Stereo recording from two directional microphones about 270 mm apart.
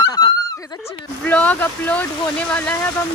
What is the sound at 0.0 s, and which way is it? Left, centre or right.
Snicker, centre.